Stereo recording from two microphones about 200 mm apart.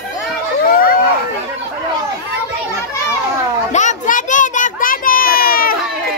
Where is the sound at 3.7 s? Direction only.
35° left (ahead or behind).